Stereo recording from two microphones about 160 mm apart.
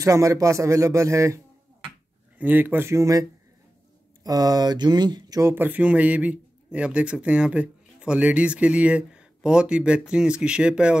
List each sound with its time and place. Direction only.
0.0 s speech: 20° right (ahead or behind)